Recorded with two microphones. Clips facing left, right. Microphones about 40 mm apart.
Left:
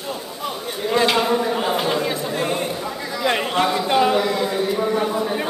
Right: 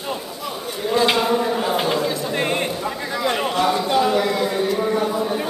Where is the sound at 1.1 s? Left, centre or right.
Centre.